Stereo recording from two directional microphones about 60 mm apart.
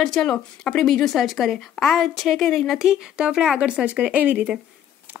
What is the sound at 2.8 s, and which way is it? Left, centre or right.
A woman's voice, centre.